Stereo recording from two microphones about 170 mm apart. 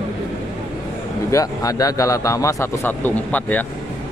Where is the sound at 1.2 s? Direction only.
20° left (ahead or behind).